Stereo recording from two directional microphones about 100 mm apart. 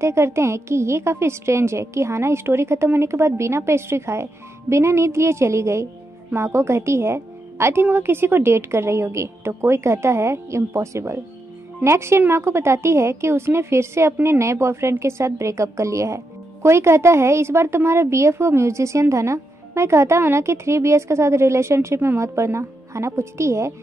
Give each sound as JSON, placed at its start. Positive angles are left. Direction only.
{"t": 0.0, "sound": "a woman's voice", "side_deg": -25}